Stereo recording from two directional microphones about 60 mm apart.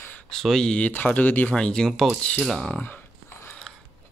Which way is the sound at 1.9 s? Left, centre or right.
Centre.